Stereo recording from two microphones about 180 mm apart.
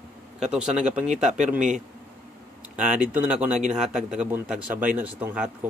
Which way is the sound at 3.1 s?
5° right (ahead or behind).